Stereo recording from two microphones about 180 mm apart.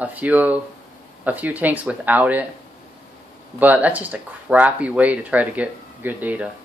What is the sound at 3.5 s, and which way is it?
Speech, 10° right (ahead or behind).